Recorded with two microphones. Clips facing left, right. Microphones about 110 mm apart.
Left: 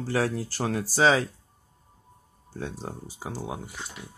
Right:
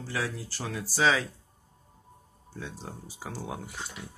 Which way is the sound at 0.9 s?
35° left (ahead or behind).